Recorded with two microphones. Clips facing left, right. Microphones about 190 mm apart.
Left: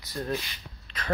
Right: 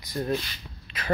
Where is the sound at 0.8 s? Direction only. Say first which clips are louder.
Even; 10° right (ahead or behind).